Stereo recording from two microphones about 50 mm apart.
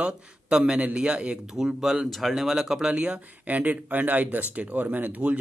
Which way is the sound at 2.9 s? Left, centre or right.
Right.